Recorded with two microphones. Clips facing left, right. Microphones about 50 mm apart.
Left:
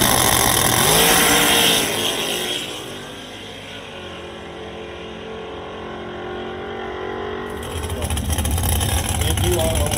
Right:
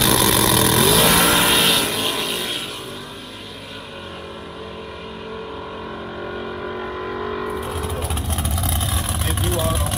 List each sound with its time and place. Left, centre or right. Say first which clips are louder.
0.0 s vehicle: even; left
6.6 s vehicle: even; centre
7.1 s a sound: right 1 dB; left
8.7 s vehicle: left 1 dB; left